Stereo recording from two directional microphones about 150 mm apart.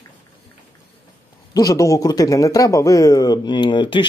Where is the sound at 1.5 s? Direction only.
20° left (ahead or behind).